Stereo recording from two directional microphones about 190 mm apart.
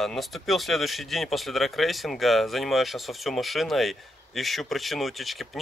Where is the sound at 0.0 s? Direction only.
Centre (ahead or behind).